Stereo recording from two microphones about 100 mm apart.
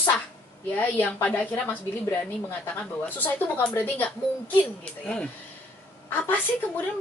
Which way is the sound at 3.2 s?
15° left (ahead or behind).